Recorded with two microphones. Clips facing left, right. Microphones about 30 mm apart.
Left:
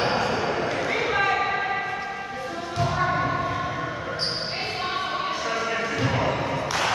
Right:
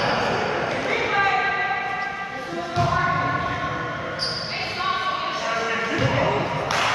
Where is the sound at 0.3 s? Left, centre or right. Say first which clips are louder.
Right 2 dB; centre.